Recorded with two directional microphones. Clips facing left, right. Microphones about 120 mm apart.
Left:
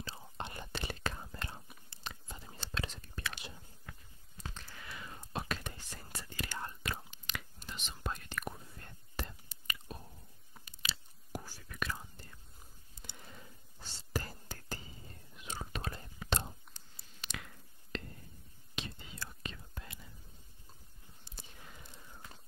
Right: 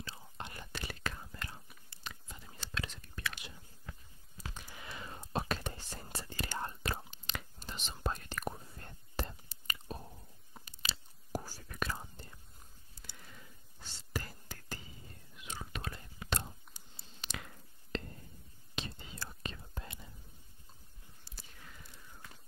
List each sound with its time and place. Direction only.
0.0 s whispering: 30° left (ahead or behind)
4.6 s whispering: 15° right (ahead or behind)
4.9 s whispering: 30° right (ahead or behind)
13.0 s a sound: 20° left (ahead or behind)
13.8 s whispering: 35° left (ahead or behind)
16.9 s a sound: 30° right (ahead or behind)
18.8 s whispering: 35° right (ahead or behind)
21.2 s whispering: 20° left (ahead or behind)